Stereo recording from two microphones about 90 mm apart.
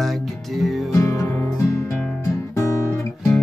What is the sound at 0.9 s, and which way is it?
Music, 35° left (ahead or behind).